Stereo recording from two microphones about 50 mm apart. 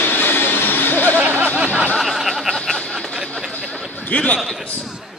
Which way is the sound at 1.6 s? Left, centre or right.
Right.